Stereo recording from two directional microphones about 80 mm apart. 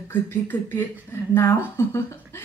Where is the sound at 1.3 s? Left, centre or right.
Left.